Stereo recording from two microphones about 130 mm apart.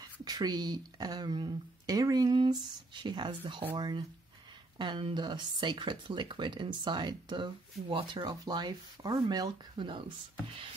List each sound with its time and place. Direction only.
0.2 s speech: 30° right (ahead or behind)